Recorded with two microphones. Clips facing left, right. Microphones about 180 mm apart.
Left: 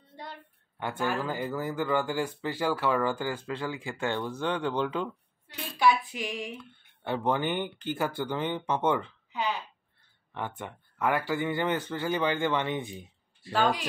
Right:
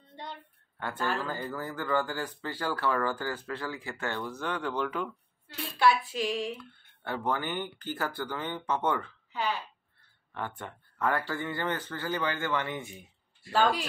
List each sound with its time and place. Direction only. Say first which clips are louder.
0.7 s speech: left 2 dB; 15° left (ahead or behind)